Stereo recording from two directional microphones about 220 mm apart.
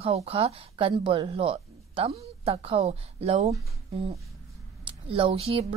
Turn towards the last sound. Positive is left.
turn(degrees=-25)  # may be behind; listen again after turning